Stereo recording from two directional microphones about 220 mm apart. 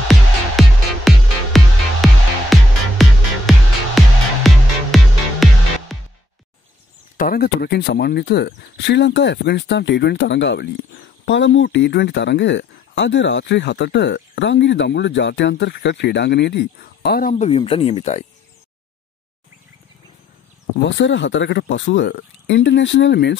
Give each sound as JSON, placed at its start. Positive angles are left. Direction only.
{"t": 0.1, "sound": "music", "side_deg": 0}
{"t": 7.2, "sound": "speech", "side_deg": 40}
{"t": 17.3, "sound": "speech", "side_deg": 30}
{"t": 20.7, "sound": "speech", "side_deg": 55}